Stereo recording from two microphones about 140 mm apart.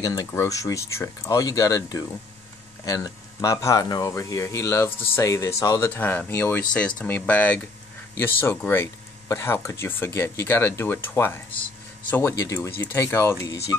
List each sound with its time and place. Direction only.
0.0 s speech: 25° left (ahead or behind)